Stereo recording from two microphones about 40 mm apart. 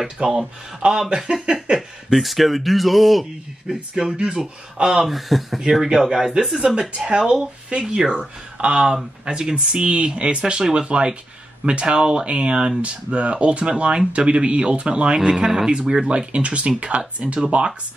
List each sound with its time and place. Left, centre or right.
0.0 s speech: centre
0.8 s speech: right
1.8 s speech: centre
4.0 s speech: centre
5.0 s speech: centre
5.7 s speech: centre
7.8 s speech: centre
8.5 s speech: right
15.1 s speech: centre